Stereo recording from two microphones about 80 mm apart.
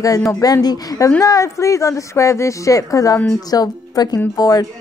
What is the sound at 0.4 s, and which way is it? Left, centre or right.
Speech, left.